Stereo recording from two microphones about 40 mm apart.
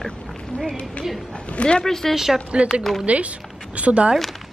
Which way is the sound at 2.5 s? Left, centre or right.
Right.